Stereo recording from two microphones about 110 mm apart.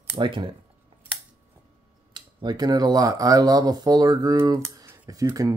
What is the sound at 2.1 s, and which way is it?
Speech, 40° right (ahead or behind).